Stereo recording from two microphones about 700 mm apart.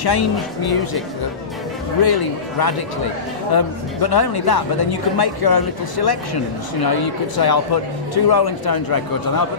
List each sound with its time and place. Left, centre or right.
0.0 s speech: left
2.0 s speech: left